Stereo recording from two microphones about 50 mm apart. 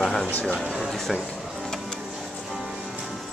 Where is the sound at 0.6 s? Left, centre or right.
Centre.